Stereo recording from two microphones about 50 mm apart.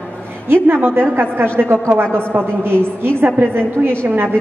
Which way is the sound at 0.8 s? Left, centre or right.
Right.